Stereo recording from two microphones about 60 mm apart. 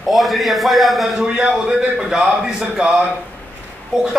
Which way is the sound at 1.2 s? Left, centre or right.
Centre.